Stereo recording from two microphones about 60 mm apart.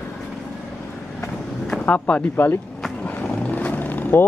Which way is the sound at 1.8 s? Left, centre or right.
Left.